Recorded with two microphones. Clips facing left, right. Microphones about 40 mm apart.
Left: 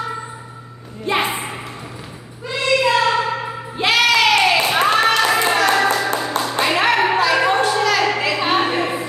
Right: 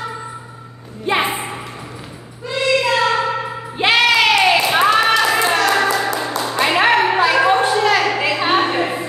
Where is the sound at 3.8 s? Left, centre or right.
Right.